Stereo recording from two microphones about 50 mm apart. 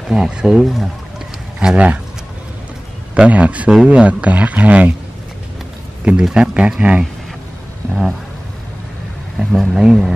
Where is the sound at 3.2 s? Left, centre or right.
Right.